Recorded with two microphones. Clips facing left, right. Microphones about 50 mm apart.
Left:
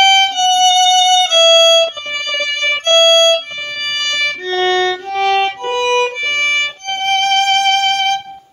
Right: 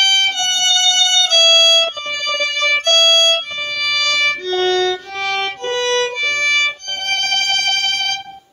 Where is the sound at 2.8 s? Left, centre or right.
Left.